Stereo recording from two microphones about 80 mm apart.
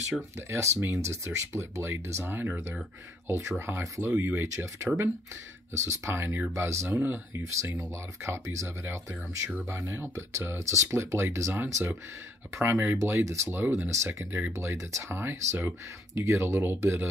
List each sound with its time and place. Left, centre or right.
0.5 s speech: right
4.1 s speech: right
11.6 s speech: right
13.0 s speech: right